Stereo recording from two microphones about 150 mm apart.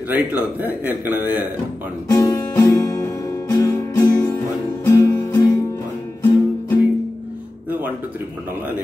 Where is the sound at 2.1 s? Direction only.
25° left (ahead or behind).